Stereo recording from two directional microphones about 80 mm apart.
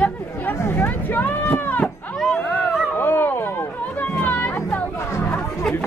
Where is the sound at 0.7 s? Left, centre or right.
Left.